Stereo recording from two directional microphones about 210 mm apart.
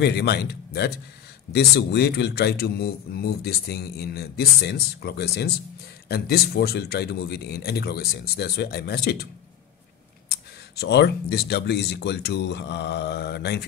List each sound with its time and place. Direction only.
0.0 s a man's voice: 50° left (ahead or behind)
10.8 s a man's voice: 50° left (ahead or behind)